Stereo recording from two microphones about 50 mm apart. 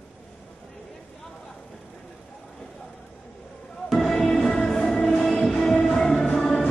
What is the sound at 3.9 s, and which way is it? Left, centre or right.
Music, centre.